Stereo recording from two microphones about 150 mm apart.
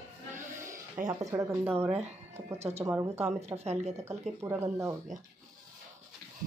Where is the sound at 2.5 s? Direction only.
45° right (ahead or behind).